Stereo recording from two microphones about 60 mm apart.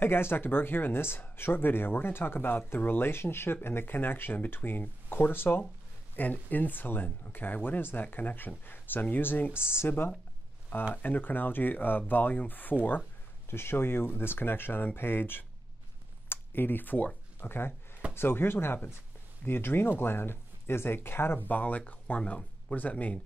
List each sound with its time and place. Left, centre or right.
0.0 s speech: left
13.5 s speech: left
17.4 s speech: left